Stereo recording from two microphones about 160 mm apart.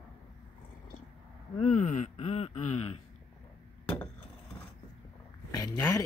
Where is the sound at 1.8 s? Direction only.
50° left (ahead or behind).